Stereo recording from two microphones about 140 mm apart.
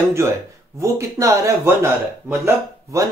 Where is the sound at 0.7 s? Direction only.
20° right (ahead or behind).